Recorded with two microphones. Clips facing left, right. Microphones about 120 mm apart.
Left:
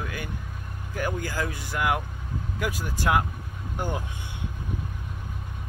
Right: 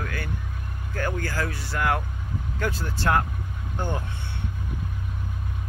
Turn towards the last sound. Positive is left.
turn(degrees=10)  # may be behind; listen again after turning